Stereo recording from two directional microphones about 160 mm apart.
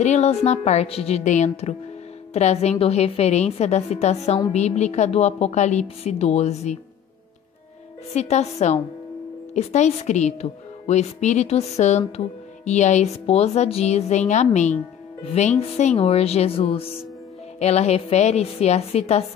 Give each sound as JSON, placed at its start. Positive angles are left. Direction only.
{"t": 0.0, "sound": "a woman's voice", "side_deg": 45}
{"t": 8.1, "sound": "a woman's voice", "side_deg": 45}